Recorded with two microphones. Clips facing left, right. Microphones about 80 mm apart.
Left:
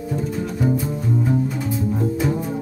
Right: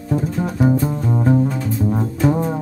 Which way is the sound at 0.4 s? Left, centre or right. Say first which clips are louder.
Right 5 dB; right.